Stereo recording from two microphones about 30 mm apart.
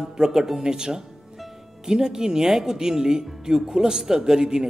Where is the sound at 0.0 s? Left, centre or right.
Centre.